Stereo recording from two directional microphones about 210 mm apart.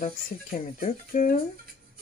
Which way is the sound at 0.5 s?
40° left (ahead or behind).